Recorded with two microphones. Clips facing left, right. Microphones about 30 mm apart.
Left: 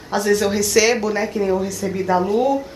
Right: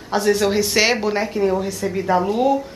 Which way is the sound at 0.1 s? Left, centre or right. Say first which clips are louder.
Even; centre.